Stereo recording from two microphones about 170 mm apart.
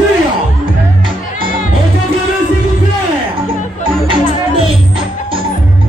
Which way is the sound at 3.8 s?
30° right (ahead or behind).